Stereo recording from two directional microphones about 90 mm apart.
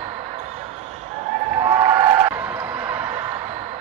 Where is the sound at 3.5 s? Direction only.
55° right (ahead or behind).